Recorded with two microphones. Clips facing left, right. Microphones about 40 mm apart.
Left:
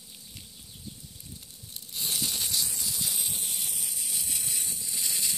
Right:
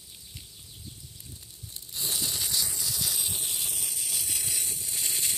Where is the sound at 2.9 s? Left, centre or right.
Left.